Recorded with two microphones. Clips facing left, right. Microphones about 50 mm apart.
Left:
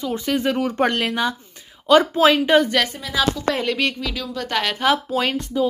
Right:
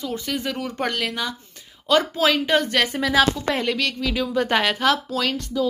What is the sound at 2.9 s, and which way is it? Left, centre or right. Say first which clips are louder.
Speech: right 3 dB; right.